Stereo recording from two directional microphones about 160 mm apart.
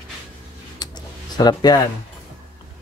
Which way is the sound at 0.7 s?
25° left (ahead or behind).